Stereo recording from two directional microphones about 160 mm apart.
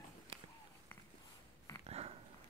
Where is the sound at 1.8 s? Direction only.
40° right (ahead or behind).